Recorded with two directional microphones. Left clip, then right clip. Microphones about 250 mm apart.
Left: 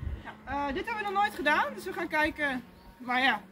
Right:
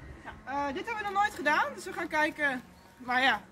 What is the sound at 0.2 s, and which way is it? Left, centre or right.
Speech, centre.